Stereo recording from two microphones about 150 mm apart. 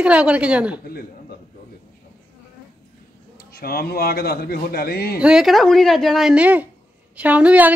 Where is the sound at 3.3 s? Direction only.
90° left.